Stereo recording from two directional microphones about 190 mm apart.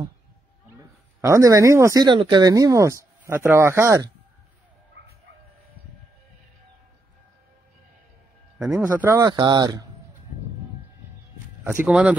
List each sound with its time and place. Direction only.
1.2 s speech: 15° right (ahead or behind)
8.5 s speech: 5° right (ahead or behind); by 9.8 s 20° right (ahead or behind)
11.6 s speech: 10° right (ahead or behind)